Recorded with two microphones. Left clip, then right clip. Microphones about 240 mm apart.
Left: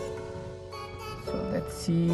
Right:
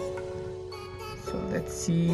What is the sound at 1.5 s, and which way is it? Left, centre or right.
Music, centre.